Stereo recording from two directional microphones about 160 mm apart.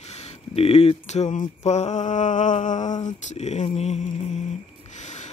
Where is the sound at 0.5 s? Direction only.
40° left (ahead or behind).